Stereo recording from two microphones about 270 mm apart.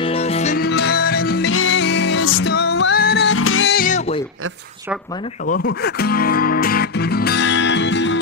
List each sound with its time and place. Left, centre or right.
0.0 s music: left
0.7 s music: left
1.5 s music: left
3.7 s music: left
5.5 s speech: left